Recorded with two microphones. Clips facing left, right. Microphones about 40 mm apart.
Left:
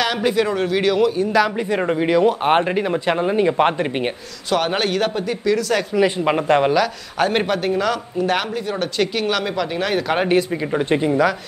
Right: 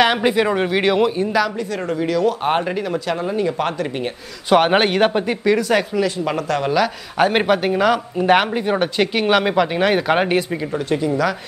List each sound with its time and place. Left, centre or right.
0.0 s speech: right
1.7 s speech: left
4.5 s speech: right
5.9 s speech: left
6.7 s speech: centre
10.7 s speech: left